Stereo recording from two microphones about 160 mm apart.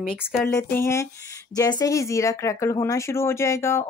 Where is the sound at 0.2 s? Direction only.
Centre (ahead or behind).